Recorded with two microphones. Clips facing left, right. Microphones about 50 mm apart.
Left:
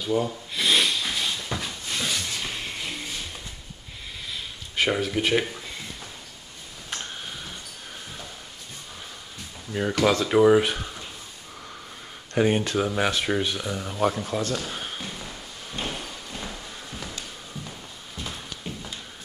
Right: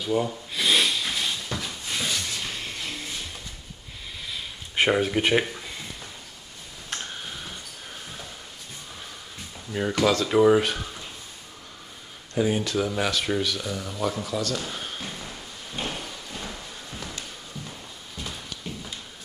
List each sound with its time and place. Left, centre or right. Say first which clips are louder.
0.0 s a sound: even; centre
2.2 s music: left 1 dB; centre
4.7 s speech: right 2 dB; right
6.9 s tick: even; centre
9.7 s speech: left 1 dB; centre
12.4 s speech: left 2 dB; left
12.7 s speech: left 1 dB; left
14.7 s a sound: left 1 dB; centre
18.1 s a sound: left 1 dB; centre